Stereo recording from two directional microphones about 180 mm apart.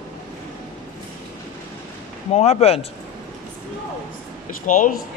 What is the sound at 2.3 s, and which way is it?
Speech, 35° left (ahead or behind).